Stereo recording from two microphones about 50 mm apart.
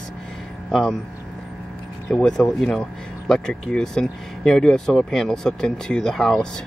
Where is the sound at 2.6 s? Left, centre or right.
Centre.